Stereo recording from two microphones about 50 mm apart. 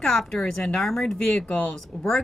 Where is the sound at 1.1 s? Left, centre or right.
Centre.